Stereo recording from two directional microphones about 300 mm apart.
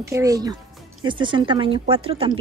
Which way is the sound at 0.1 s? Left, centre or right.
Centre.